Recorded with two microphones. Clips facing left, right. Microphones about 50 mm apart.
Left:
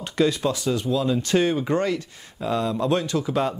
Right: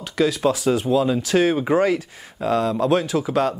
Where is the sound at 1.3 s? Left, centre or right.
Centre.